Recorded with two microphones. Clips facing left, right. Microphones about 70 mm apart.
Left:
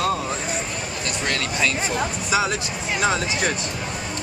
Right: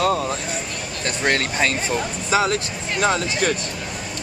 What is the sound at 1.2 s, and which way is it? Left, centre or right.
Speech, right.